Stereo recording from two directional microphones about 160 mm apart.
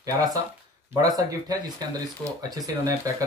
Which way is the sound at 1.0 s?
25° right (ahead or behind).